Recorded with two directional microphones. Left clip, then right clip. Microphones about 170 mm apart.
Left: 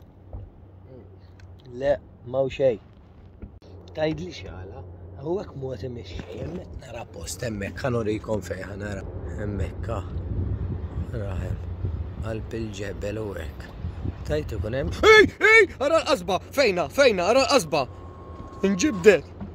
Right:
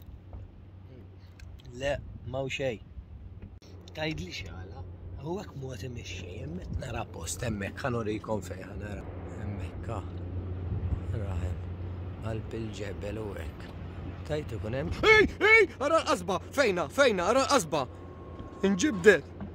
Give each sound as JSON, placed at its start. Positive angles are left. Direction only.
{"t": 1.7, "sound": "speech", "side_deg": -20}
{"t": 3.9, "sound": "speech", "side_deg": -15}
{"t": 6.1, "sound": "speech", "side_deg": -45}
{"t": 7.2, "sound": "speech", "side_deg": 0}
{"t": 11.1, "sound": "speech", "side_deg": 15}
{"t": 15.2, "sound": "speech", "side_deg": 10}